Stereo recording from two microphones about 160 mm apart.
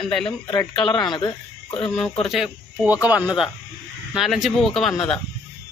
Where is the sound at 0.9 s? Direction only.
25° left (ahead or behind).